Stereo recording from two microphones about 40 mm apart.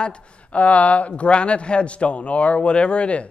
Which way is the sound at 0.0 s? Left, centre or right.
Left.